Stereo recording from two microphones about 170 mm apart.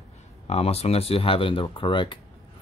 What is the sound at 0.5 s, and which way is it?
Speech, 35° left (ahead or behind).